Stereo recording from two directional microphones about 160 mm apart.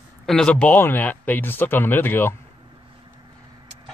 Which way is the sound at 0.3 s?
5° left (ahead or behind).